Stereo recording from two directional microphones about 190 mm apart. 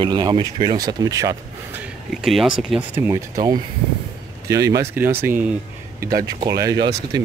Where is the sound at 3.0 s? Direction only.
15° right (ahead or behind).